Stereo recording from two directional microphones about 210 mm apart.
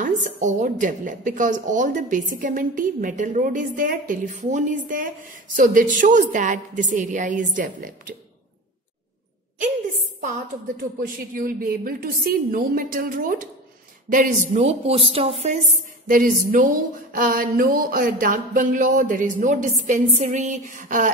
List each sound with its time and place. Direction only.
0.0 s a woman's voice: 35° right (ahead or behind)
11.0 s a woman's voice: 45° right (ahead or behind); by 15.3 s 25° right (ahead or behind)
16.1 s a woman's voice: 40° right (ahead or behind)